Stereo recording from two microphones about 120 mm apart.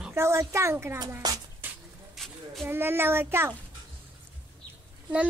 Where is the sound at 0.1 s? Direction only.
25° right (ahead or behind).